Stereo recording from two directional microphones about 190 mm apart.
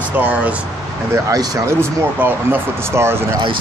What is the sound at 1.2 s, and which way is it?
Speech, 20° right (ahead or behind).